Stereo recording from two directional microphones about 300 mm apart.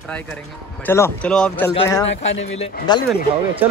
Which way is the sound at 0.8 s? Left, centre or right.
Centre.